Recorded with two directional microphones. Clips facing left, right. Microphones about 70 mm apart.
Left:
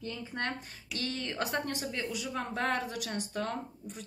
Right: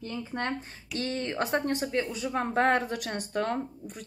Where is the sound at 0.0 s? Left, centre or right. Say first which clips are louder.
Right 3 dB; right.